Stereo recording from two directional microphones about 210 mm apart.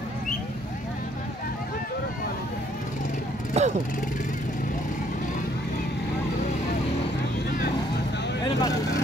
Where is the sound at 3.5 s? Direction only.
30° right (ahead or behind).